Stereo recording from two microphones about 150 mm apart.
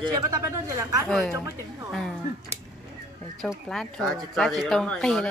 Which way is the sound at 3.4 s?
5° left (ahead or behind).